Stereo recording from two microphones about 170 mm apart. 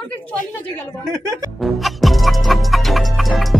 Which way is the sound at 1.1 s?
20° right (ahead or behind).